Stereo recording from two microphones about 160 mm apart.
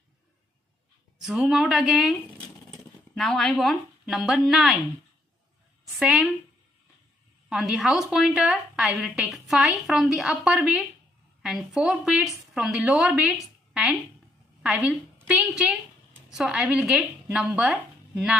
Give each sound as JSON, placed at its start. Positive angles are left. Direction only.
{"t": 1.2, "sound": "a woman's voice", "side_deg": -5}
{"t": 3.2, "sound": "a woman's voice", "side_deg": 5}
{"t": 5.9, "sound": "a woman's voice", "side_deg": -5}
{"t": 7.4, "sound": "a woman's voice", "side_deg": 0}